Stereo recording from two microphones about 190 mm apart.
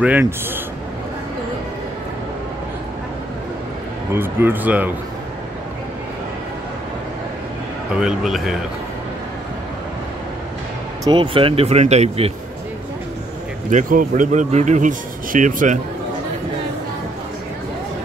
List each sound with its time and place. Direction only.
0.0 s speech: 10° right (ahead or behind)
4.1 s speech: 10° right (ahead or behind)
7.9 s a man's voice: 5° right (ahead or behind)
11.1 s speech: 25° right (ahead or behind)
13.7 s speech: 45° right (ahead or behind)